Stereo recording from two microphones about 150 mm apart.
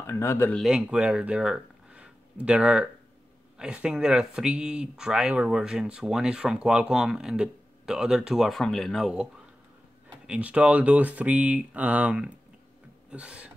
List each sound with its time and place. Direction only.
0.0 s speech: 15° left (ahead or behind)
0.6 s speech: 5° right (ahead or behind)